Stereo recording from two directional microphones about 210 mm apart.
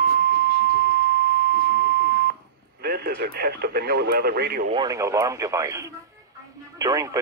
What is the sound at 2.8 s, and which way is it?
Speech, 50° right (ahead or behind).